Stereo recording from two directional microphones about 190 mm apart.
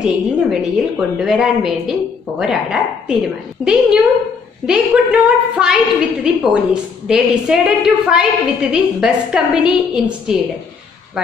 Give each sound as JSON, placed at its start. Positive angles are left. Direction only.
{"t": 0.0, "sound": "a woman's voice", "side_deg": -5}